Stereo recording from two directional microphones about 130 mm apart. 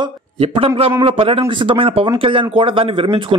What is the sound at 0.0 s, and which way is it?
A man's voice, 40° right (ahead or behind).